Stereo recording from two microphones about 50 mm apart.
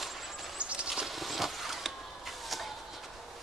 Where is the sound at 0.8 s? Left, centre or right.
Centre.